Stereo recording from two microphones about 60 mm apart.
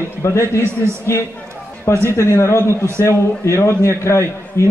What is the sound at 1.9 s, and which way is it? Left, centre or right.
A man's voice, left.